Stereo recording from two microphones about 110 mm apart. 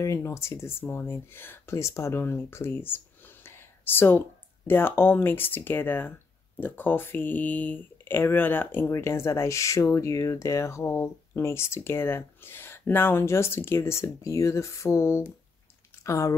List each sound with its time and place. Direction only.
0.0 s speech: 25° left (ahead or behind)